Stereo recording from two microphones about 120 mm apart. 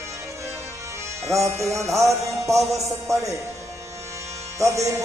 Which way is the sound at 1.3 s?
25° right (ahead or behind).